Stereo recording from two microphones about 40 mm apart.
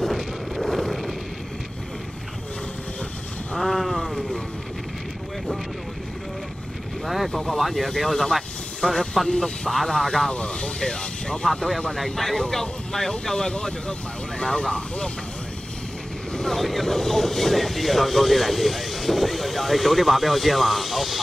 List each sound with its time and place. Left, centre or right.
0.0 s vehicle: centre
3.5 s a sound: centre
7.2 s speech: centre
10.3 s speech: left
10.8 s speech: centre
16.3 s speech: centre